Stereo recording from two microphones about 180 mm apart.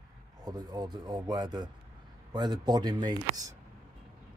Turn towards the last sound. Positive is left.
turn(degrees=-20)  # may be behind; listen again after turning